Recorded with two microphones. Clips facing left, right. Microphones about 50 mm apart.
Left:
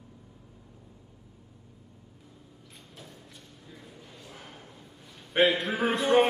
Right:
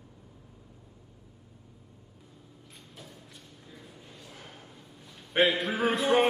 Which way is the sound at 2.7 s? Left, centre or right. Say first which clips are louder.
Even; centre.